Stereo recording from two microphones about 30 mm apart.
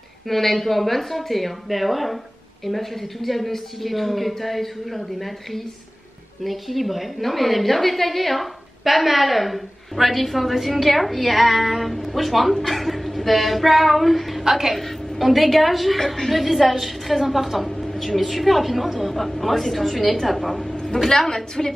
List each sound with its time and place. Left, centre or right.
0.3 s a woman's voice: centre
17.6 s a woman's voice: centre
20.5 s a sound: left
21.6 s a woman's voice: centre